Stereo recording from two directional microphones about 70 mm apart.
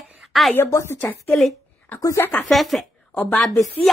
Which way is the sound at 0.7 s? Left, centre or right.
Left.